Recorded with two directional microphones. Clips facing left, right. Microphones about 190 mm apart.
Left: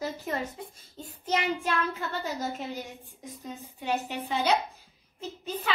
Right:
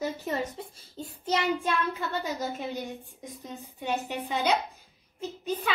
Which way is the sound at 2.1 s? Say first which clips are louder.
Right 1 dB; 15° right (ahead or behind).